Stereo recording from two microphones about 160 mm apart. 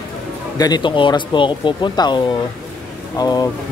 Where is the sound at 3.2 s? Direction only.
25° left (ahead or behind).